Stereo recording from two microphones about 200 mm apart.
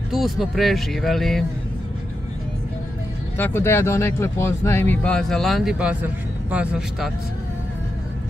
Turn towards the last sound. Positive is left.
turn(degrees=-5)  # may be behind; listen again after turning